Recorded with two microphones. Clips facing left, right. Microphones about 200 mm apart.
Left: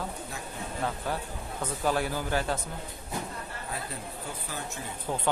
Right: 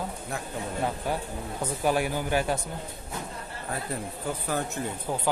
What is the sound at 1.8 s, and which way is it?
Speech, 15° right (ahead or behind).